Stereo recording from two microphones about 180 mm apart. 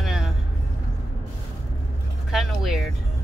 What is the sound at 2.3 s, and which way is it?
Speech, centre (ahead or behind).